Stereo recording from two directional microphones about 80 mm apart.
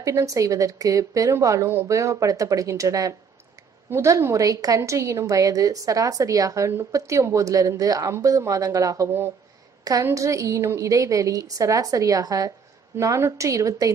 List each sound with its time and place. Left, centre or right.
0.0 s a woman's voice: right
10.1 s a woman's voice: right
12.9 s a woman's voice: right